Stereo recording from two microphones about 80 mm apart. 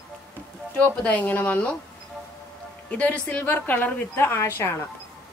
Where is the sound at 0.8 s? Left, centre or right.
Centre.